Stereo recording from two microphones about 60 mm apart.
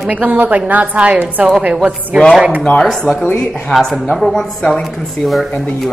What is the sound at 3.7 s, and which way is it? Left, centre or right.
A woman's voice, centre.